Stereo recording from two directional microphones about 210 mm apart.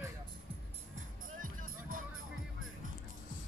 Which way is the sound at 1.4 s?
40° right (ahead or behind).